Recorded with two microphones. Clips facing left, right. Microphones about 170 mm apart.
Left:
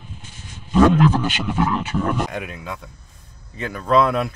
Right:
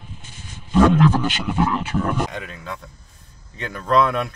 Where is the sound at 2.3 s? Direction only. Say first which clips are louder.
Left 2 dB; 10° left (ahead or behind).